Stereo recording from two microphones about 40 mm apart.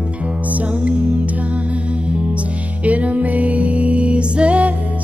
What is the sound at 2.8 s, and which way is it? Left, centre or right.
Music, right.